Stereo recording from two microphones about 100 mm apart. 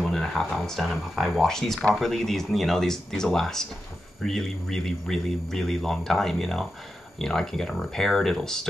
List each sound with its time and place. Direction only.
0.0 s speech: 5° left (ahead or behind)